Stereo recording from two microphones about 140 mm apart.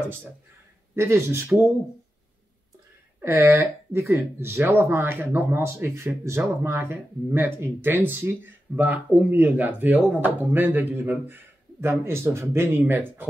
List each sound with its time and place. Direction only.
0.9 s speech: 15° right (ahead or behind)
3.2 s speech: 15° right (ahead or behind)